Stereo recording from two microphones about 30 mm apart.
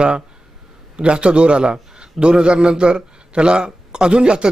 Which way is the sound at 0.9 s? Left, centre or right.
Right.